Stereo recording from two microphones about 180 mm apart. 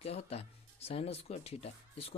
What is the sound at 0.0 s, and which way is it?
Speech, 35° left (ahead or behind).